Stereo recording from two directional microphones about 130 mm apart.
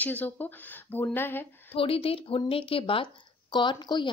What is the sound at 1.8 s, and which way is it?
Speech, 45° left (ahead or behind).